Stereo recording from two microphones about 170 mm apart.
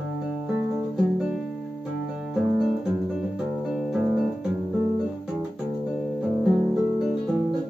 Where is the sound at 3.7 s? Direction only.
5° right (ahead or behind).